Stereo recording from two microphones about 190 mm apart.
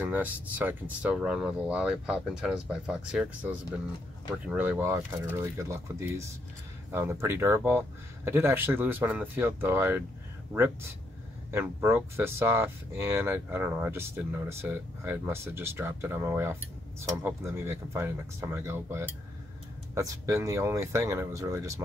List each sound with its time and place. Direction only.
0.0 s speech: 10° right (ahead or behind)